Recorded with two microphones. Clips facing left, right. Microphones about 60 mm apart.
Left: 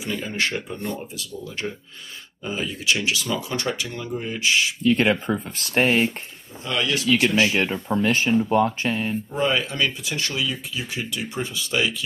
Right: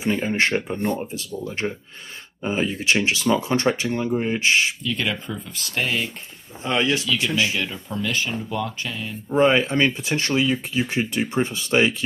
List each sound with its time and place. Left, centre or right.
0.0 s speech: right
4.8 s speech: left
6.6 s speech: right
7.0 s speech: left
9.3 s speech: right